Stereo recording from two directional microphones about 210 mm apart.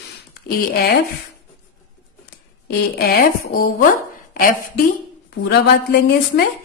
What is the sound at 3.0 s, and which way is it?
Speech, 45° left (ahead or behind).